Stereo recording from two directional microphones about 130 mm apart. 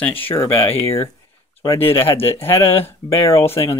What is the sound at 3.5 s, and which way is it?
Speech, 50° left (ahead or behind).